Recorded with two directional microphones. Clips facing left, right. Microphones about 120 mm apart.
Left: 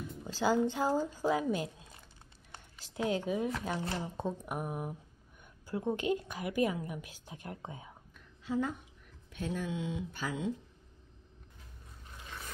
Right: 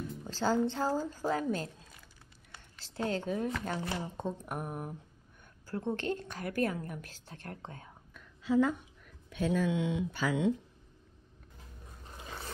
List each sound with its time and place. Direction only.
0.3 s a woman's voice: 10° left (ahead or behind)
2.7 s a sound: 15° left (ahead or behind)
3.1 s a woman's voice: 10° left (ahead or behind)
8.1 s whispering: 90° right
9.3 s speech: 90° right